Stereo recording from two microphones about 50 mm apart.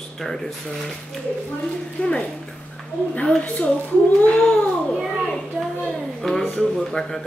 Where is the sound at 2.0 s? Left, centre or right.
Left.